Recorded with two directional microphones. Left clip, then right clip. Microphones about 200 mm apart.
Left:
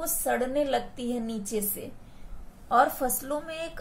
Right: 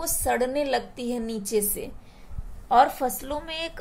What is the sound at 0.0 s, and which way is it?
A woman's voice, 35° right (ahead or behind).